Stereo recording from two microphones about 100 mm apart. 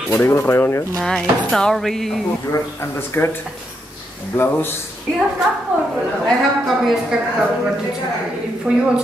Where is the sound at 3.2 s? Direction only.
20° left (ahead or behind).